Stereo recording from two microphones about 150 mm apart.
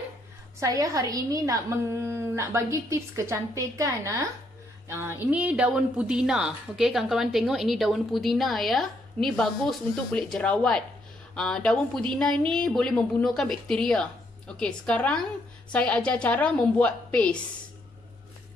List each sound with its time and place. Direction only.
0.6 s a woman's voice: 20° right (ahead or behind); by 17.4 s 10° left (ahead or behind)